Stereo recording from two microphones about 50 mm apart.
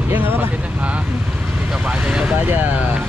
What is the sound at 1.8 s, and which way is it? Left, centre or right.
Speech, centre.